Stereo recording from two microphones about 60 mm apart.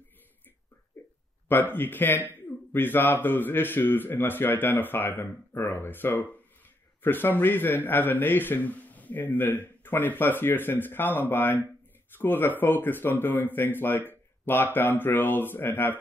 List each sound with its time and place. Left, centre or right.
1.5 s a man's voice: left